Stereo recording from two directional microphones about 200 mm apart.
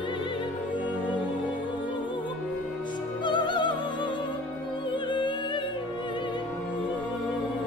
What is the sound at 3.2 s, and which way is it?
Music, 25° left (ahead or behind).